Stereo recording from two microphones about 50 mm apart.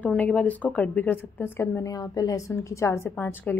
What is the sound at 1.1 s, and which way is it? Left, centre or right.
Speech, left.